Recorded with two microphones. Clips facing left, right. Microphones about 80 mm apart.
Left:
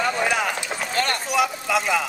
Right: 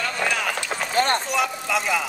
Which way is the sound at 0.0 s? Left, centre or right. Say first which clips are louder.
Left 3 dB; centre.